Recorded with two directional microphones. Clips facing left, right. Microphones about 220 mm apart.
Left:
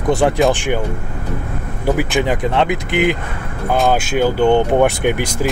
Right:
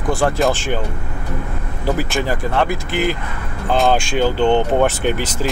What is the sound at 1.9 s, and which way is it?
Speech, 15° left (ahead or behind).